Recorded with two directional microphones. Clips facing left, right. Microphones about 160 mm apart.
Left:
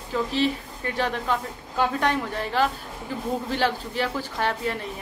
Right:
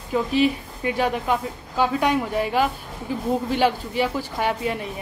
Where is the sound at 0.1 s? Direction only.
10° right (ahead or behind).